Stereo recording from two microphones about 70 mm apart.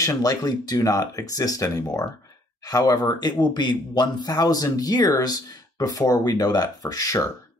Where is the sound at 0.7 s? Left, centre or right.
Left.